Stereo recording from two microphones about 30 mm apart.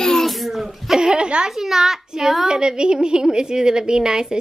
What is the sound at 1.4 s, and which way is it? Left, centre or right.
A child's voice, centre.